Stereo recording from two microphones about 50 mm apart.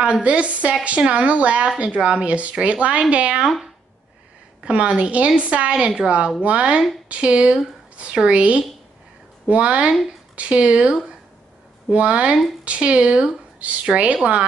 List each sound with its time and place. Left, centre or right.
0.0 s a woman's voice: right
4.6 s a woman's voice: right